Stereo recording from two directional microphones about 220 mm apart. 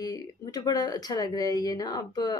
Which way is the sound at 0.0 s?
15° left (ahead or behind).